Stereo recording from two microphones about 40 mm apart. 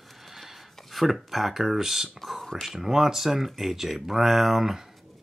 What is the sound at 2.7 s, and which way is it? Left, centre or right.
Speech, centre.